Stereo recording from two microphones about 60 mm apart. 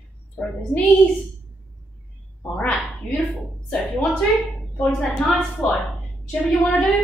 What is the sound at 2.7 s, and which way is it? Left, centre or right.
Speech, centre.